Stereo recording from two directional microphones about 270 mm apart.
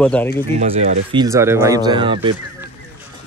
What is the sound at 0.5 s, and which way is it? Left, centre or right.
Speech, right.